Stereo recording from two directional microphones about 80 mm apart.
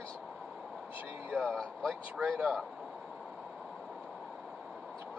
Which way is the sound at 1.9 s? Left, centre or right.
Centre.